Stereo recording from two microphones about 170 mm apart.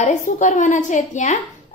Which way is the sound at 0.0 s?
45° left (ahead or behind).